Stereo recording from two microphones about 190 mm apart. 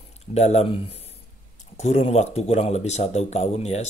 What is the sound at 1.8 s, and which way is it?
Speech, 35° left (ahead or behind).